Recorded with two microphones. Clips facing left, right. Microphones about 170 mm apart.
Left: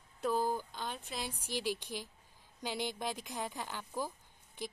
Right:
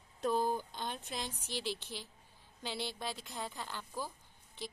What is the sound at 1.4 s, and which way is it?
Speech, 10° left (ahead or behind).